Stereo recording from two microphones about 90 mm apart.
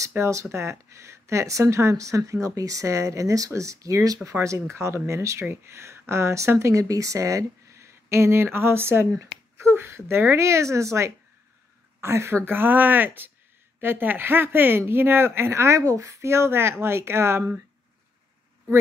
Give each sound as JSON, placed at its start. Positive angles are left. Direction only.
{"t": 0.1, "sound": "speech", "side_deg": -35}